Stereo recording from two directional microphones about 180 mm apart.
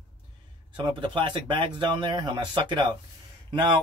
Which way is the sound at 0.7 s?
25° right (ahead or behind).